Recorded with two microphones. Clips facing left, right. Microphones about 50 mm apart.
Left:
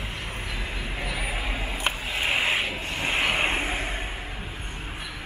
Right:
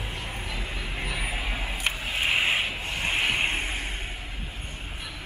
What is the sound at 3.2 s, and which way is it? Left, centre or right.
Vehicle, centre.